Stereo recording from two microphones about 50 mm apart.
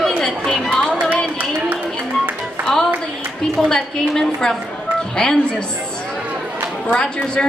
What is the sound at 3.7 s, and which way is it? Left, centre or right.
Speech, centre.